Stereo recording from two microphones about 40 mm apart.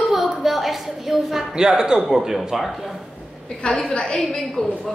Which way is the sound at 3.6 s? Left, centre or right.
Left.